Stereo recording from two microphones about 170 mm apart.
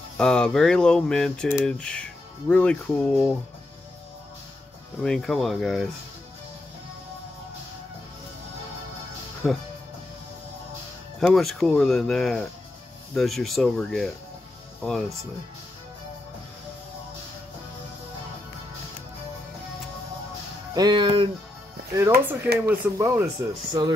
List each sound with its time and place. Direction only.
0.2 s speech: 5° left (ahead or behind)
5.0 s speech: 5° left (ahead or behind)
9.4 s speech: centre (ahead or behind)
11.1 s speech: centre (ahead or behind)
20.7 s speech: 25° right (ahead or behind)
21.9 s speech: 20° right (ahead or behind)